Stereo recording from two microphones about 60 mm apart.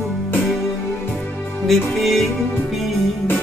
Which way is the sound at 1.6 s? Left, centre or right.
Centre.